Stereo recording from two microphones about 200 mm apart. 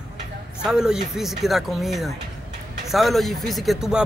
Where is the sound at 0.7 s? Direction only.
5° right (ahead or behind).